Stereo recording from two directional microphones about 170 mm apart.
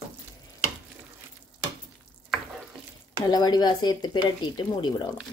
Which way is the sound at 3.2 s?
25° left (ahead or behind).